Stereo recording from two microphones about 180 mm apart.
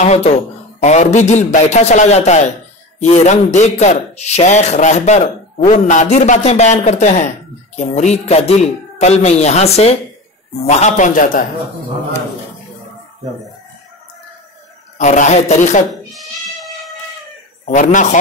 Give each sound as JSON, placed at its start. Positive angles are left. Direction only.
{"t": 0.0, "sound": "a man's voice", "side_deg": 40}
{"t": 15.0, "sound": "a man's voice", "side_deg": 40}
{"t": 15.9, "sound": "a sound", "side_deg": 0}
{"t": 17.6, "sound": "a man's voice", "side_deg": 45}